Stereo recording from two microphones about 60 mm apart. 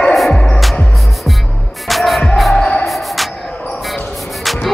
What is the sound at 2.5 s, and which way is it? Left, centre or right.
Basketball bounce, centre.